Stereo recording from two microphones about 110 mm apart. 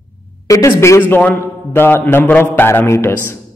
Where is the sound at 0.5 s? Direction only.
25° left (ahead or behind).